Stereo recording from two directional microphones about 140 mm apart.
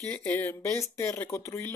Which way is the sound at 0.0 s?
15° left (ahead or behind).